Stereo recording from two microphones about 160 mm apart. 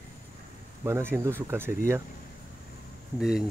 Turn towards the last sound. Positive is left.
turn(degrees=-5)  # may be behind; listen again after turning